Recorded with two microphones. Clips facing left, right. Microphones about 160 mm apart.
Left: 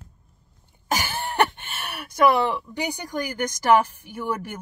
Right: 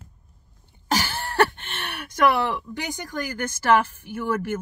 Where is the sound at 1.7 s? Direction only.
10° left (ahead or behind).